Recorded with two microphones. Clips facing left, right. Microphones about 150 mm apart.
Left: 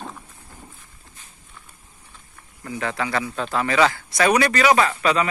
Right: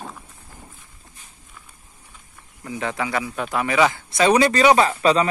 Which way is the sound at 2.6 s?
15° right (ahead or behind).